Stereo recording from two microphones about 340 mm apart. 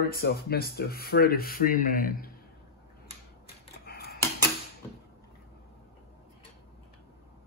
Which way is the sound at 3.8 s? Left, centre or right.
Left.